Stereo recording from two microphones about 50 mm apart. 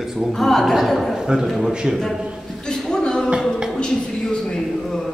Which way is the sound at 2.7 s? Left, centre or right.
Centre.